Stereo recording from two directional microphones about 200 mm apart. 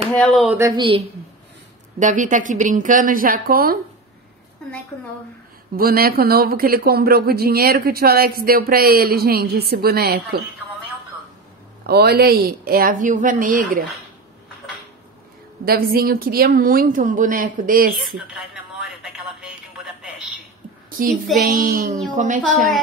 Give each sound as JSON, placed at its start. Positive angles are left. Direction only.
{"t": 0.1, "sound": "speech", "side_deg": 0}
{"t": 0.6, "sound": "a woman's voice", "side_deg": -20}
{"t": 2.0, "sound": "a woman's voice", "side_deg": -40}
{"t": 5.8, "sound": "speech", "side_deg": -50}
{"t": 11.8, "sound": "speech", "side_deg": -55}
{"t": 15.6, "sound": "speech", "side_deg": -50}
{"t": 17.9, "sound": "telephone", "side_deg": 0}
{"t": 21.4, "sound": "a woman's voice", "side_deg": -45}